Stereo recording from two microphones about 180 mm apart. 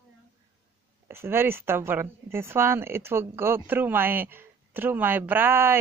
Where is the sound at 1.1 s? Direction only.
15° right (ahead or behind).